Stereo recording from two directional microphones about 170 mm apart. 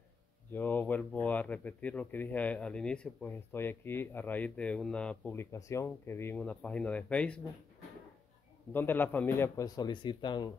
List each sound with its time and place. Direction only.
0.5 s speech: 10° left (ahead or behind)
8.7 s a man's voice: 10° left (ahead or behind)